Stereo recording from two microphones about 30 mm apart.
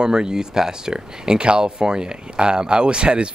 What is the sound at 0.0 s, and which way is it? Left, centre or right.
Speech, right.